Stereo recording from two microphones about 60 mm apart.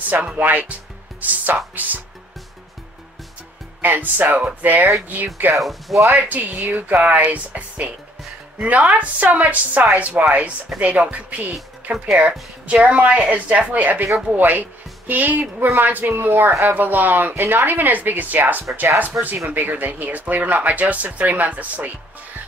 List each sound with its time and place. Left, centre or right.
0.4 s speech: right
3.8 s speech: right
5.6 s speech: centre
6.1 s speech: right
11.5 s speech: centre
12.8 s a woman's voice: right
19.5 s speech: right